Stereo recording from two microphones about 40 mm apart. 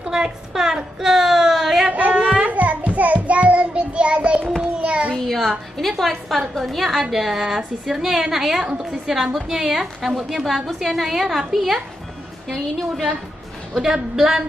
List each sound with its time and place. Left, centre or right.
0.0 s a woman's voice: centre
1.9 s child singing: right
4.8 s a sound: right
5.1 s a woman's voice: centre
14.1 s a woman's voice: centre